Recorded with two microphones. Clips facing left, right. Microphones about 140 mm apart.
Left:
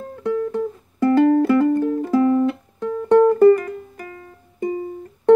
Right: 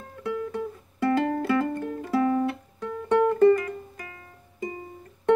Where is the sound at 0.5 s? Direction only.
40° left (ahead or behind).